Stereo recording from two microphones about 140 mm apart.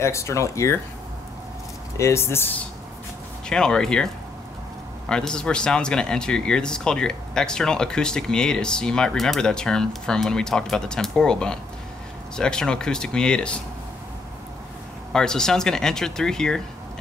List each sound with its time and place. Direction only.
0.0 s speech: 20° left (ahead or behind)
2.0 s speech: 20° left (ahead or behind)
3.4 s speech: 5° left (ahead or behind)
15.1 s speech: 5° left (ahead or behind)